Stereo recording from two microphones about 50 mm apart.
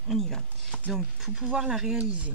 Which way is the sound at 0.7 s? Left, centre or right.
Centre.